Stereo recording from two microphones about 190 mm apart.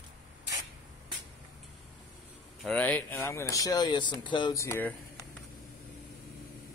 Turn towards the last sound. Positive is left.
turn(degrees=10)  # may be behind; listen again after turning